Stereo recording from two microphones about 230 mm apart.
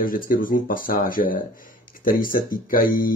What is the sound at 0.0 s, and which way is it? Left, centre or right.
Speech, left.